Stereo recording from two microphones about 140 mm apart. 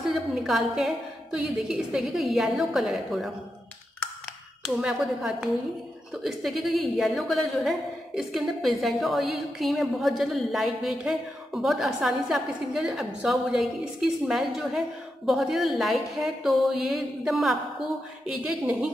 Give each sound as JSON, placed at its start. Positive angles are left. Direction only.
{"t": 0.1, "sound": "a woman's voice", "side_deg": 0}
{"t": 4.6, "sound": "a woman's voice", "side_deg": 0}